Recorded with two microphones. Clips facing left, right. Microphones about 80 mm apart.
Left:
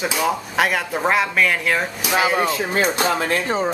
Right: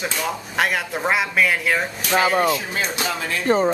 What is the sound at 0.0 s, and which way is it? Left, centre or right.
Speech, centre.